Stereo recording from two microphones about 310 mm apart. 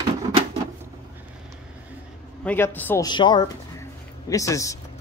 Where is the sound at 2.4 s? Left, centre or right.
Centre.